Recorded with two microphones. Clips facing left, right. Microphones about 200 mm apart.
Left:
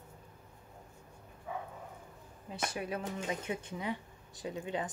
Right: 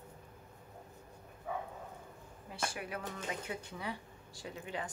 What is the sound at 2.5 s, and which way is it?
Speech, 20° left (ahead or behind).